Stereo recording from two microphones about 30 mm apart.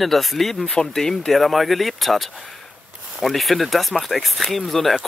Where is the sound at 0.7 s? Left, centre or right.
Centre.